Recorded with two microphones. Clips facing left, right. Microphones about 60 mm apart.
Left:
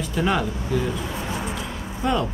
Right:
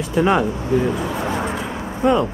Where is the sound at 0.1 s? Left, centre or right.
Right.